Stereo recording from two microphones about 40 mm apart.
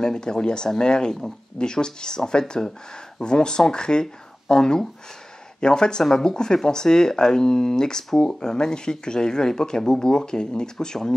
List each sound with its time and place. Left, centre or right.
0.0 s speech: centre